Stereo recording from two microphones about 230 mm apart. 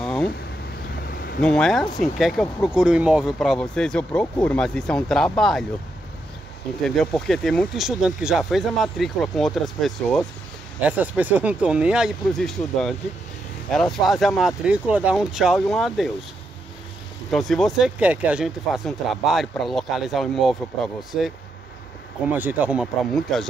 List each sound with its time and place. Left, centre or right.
0.0 s a sound: centre
1.0 s a sound: left
1.4 s speech: centre
6.8 s speech: centre
17.3 s speech: centre
22.3 s speech: centre